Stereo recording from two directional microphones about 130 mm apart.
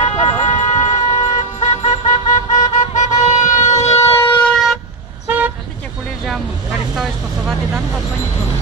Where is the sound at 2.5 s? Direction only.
60° left (ahead or behind).